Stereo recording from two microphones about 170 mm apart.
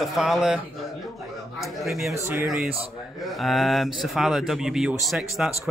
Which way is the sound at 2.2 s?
15° right (ahead or behind).